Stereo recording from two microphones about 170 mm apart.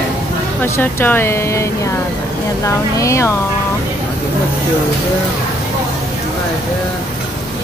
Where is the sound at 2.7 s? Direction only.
15° left (ahead or behind).